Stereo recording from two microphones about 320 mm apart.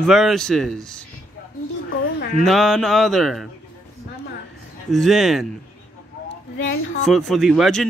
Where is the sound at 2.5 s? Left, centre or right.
Centre.